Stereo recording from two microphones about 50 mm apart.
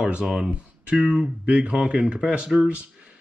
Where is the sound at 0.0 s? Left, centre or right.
Centre.